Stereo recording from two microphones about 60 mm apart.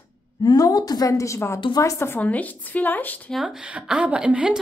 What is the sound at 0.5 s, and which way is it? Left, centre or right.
A woman's voice, left.